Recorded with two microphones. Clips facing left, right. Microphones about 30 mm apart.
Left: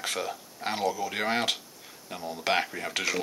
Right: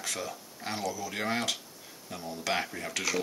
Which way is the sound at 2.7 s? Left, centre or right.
Centre.